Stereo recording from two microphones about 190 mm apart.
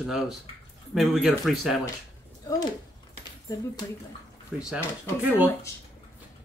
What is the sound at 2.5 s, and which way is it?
Speech, 20° left (ahead or behind).